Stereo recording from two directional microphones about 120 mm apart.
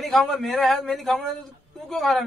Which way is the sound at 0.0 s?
Centre (ahead or behind).